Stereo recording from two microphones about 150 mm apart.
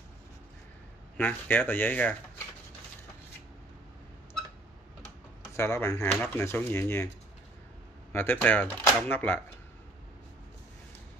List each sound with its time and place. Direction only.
1.1 s speech: 10° left (ahead or behind)
5.6 s speech: 15° left (ahead or behind)
8.1 s speech: 15° left (ahead or behind)